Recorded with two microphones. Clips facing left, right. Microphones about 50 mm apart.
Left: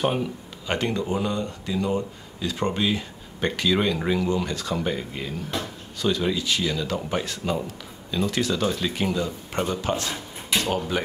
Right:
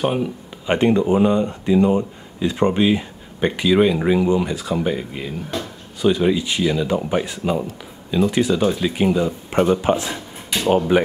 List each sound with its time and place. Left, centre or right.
0.0 s speech: centre
0.7 s speech: right